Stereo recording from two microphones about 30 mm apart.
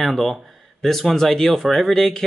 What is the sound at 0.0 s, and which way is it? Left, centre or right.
Speech, centre.